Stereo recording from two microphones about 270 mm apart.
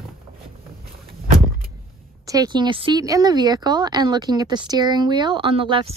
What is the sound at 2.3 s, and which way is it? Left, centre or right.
Speech, centre.